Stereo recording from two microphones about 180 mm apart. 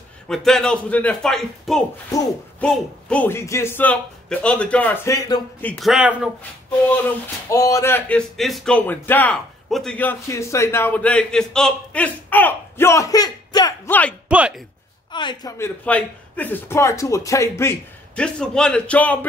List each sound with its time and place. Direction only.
0.3 s a man's voice: centre (ahead or behind); by 5.4 s 20° left (ahead or behind)
5.6 s speech: 5° left (ahead or behind)
7.4 s a man's voice: 15° left (ahead or behind)
8.4 s a man's voice: centre (ahead or behind); by 13.7 s 20° left (ahead or behind)
13.8 s a man's voice: 10° left (ahead or behind)
14.3 s speech: 5° right (ahead or behind)
15.0 s a man's voice: 25° left (ahead or behind); by 19.1 s 5° left (ahead or behind)